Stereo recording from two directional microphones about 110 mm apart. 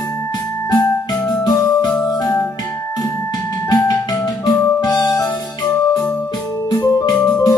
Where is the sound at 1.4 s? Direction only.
35° left (ahead or behind).